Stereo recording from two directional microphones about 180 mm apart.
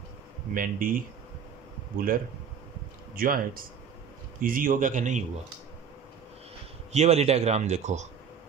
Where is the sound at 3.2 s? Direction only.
50° right (ahead or behind).